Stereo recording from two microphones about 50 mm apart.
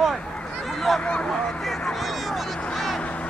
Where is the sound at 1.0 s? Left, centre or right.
Left.